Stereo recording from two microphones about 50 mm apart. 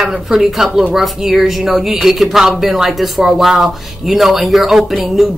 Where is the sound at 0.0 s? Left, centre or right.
Centre.